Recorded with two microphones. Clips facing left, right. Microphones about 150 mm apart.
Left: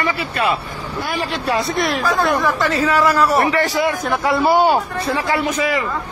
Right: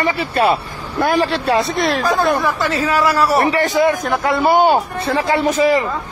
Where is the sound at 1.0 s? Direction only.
45° right (ahead or behind).